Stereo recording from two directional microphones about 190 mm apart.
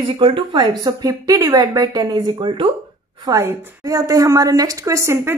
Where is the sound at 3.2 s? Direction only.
15° right (ahead or behind).